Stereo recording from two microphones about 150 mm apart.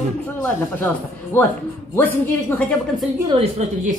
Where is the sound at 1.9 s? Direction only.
15° left (ahead or behind).